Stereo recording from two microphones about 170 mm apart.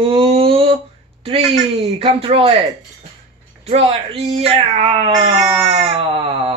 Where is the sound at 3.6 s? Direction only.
35° right (ahead or behind).